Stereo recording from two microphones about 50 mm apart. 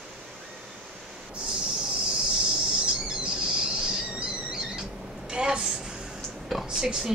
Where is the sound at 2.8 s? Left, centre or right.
Centre.